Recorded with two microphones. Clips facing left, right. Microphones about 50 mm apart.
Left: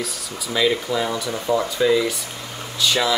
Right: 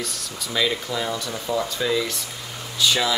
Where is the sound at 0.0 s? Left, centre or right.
Centre.